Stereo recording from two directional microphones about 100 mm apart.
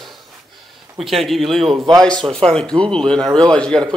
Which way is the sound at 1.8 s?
35° right (ahead or behind).